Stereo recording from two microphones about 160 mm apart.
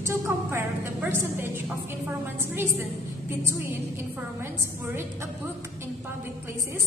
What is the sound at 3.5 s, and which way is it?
A woman's voice, 15° right (ahead or behind).